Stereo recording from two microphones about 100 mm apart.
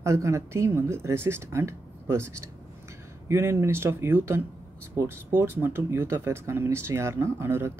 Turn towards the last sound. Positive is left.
turn(degrees=-25)  # may be behind; listen again after turning